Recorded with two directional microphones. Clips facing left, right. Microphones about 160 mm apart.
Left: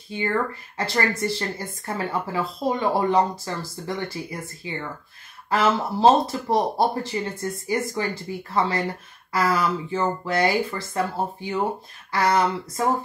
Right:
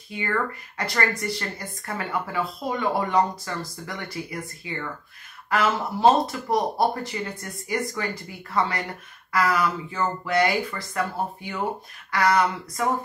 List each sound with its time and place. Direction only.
0.7 s speech: 25° left (ahead or behind)